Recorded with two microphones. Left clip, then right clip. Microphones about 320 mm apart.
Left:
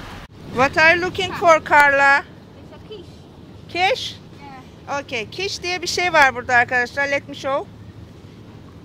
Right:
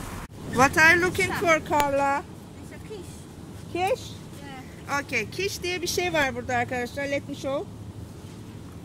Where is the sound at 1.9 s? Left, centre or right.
Left.